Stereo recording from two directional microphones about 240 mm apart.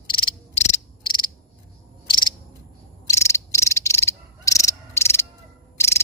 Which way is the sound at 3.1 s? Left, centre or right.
Centre.